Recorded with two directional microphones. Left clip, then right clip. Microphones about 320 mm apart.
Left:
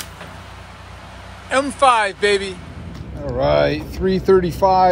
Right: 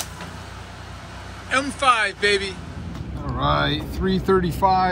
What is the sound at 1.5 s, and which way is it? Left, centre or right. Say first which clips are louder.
Speech: left 4 dB; centre.